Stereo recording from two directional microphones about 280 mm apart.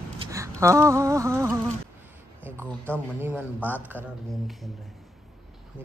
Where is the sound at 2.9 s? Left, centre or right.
Centre.